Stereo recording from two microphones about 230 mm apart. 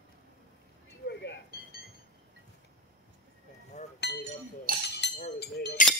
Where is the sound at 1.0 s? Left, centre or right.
Left.